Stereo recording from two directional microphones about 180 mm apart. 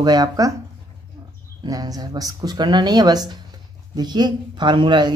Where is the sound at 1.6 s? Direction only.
20° right (ahead or behind).